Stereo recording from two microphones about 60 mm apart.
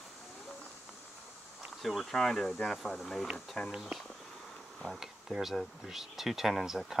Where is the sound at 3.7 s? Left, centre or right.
Centre.